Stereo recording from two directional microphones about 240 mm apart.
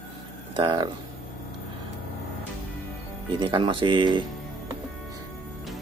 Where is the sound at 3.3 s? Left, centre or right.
Right.